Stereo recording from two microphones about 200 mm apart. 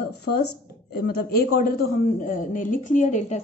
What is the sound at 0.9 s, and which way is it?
A man's voice, 50° left (ahead or behind).